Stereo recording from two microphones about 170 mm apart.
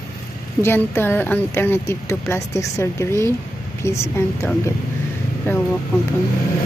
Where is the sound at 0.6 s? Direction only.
15° left (ahead or behind).